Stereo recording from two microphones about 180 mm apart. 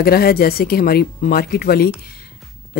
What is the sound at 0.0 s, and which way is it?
Speech, 55° left (ahead or behind).